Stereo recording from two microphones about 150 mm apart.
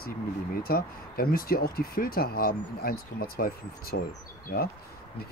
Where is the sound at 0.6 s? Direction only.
85° left.